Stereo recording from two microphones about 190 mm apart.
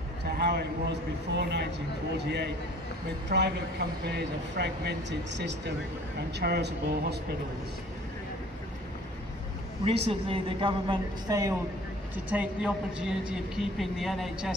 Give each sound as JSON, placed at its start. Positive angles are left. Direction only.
{"t": 0.4, "sound": "speech", "side_deg": -60}
{"t": 9.8, "sound": "a woman's voice", "side_deg": -30}
{"t": 12.3, "sound": "speech", "side_deg": -5}